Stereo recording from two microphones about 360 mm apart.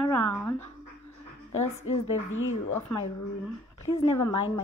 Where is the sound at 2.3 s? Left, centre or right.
Left.